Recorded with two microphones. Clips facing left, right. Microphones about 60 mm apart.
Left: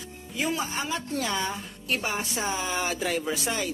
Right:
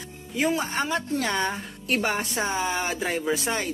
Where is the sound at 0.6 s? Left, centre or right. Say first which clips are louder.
Right 4 dB; right.